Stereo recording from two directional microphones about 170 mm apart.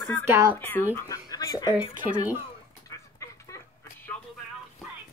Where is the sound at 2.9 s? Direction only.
20° left (ahead or behind).